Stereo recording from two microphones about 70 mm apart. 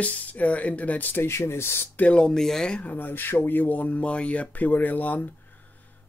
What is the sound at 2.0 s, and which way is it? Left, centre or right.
Speech, centre.